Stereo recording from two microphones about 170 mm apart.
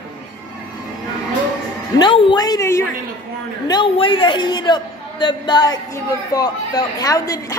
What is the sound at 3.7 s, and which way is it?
A man's voice, 30° left (ahead or behind).